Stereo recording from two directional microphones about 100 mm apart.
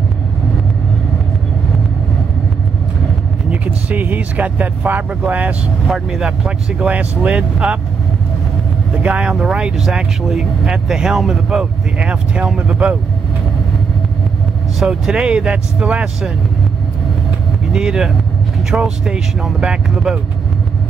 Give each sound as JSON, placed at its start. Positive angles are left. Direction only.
{"t": 3.4, "sound": "speech", "side_deg": -15}
{"t": 5.9, "sound": "speech", "side_deg": -5}
{"t": 9.0, "sound": "speech", "side_deg": -10}
{"t": 14.8, "sound": "speech", "side_deg": -5}
{"t": 17.7, "sound": "speech", "side_deg": -5}